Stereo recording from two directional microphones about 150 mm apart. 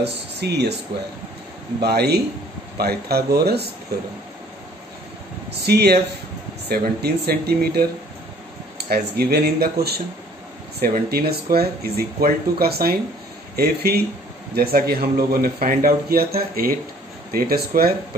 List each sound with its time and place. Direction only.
0.4 s a man's voice: 90° right
1.8 s a man's voice: 90° right
5.7 s a man's voice: 90° right
8.8 s a man's voice: 90° right